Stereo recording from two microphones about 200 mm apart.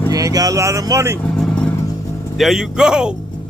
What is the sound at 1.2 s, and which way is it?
Vehicle, 5° left (ahead or behind).